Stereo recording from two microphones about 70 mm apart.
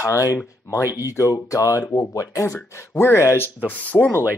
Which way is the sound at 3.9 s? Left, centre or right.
Left.